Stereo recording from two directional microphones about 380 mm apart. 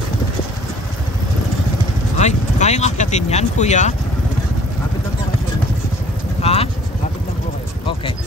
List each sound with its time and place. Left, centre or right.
2.1 s speech: centre
6.4 s vehicle: centre